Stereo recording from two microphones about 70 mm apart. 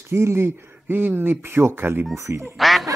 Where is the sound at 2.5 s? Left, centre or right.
Centre.